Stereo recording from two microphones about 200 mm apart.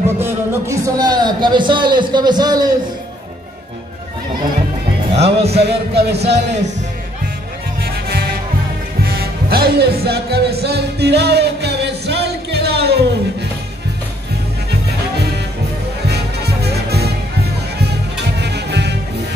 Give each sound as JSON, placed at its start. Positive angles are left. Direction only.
{"t": 0.2, "sound": "a man's voice", "side_deg": -10}
{"t": 5.1, "sound": "speech", "side_deg": -30}
{"t": 5.6, "sound": "music", "side_deg": -55}
{"t": 7.8, "sound": "music", "side_deg": -50}
{"t": 16.1, "sound": "music", "side_deg": -55}